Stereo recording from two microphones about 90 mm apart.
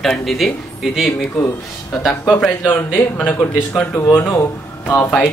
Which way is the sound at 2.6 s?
20° left (ahead or behind).